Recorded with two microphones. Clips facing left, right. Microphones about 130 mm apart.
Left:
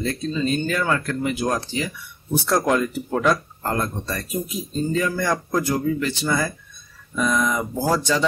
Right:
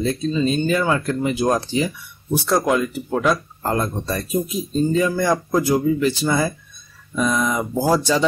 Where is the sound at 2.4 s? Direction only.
5° right (ahead or behind).